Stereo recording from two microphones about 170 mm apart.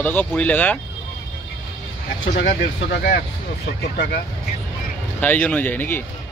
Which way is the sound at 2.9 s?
65° left (ahead or behind).